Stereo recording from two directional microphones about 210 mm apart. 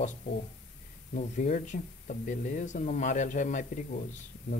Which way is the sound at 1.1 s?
35° left (ahead or behind).